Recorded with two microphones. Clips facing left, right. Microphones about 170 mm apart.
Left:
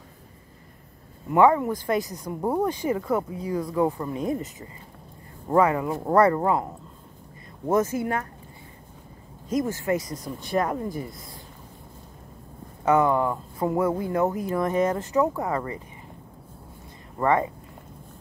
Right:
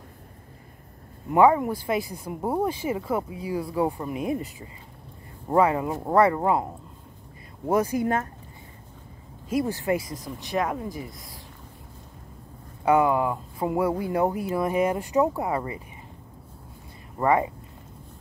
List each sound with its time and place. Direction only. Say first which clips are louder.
1.3 s speech: even; 15° right (ahead or behind)
5.5 s speech: even; 20° right (ahead or behind)
6.0 s speech: left 1 dB; 5° right (ahead or behind)
6.4 s speech: even; 20° right (ahead or behind)
9.5 s speech: even; 10° right (ahead or behind)
10.2 s speech: left 2 dB; centre (ahead or behind)
12.8 s speech: even; 10° right (ahead or behind)
17.2 s speech: even; 15° right (ahead or behind)